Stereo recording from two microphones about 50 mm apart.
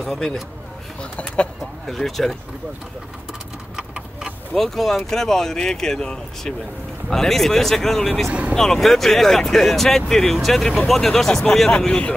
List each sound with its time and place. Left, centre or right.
0.0 s speech: centre
1.2 s speech: left
1.6 s speech: centre
3.7 s a sound: centre
4.6 s speech: centre
8.3 s speech: right
8.5 s speech: centre